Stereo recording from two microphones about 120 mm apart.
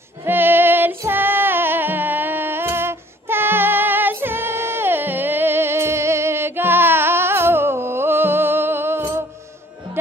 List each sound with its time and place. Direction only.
0.2 s music: 15° right (ahead or behind)